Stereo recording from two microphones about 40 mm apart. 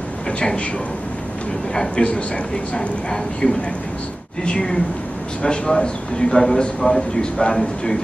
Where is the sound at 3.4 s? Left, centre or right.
Left.